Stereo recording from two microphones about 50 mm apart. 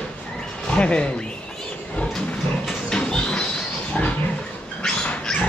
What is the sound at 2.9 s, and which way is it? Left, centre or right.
Music, centre.